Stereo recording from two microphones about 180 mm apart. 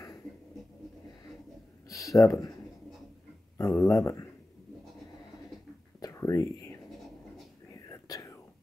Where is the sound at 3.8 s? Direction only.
15° left (ahead or behind).